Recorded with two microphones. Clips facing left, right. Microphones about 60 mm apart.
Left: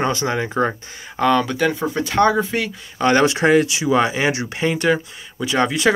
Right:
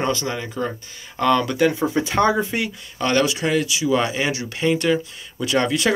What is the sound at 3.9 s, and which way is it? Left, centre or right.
Speech, centre.